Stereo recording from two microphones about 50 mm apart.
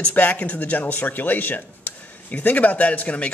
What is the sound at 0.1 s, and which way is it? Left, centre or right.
Speech, left.